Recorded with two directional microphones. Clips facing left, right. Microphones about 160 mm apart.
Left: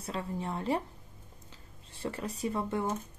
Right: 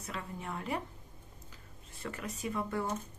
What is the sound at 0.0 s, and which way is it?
Speech, 30° left (ahead or behind).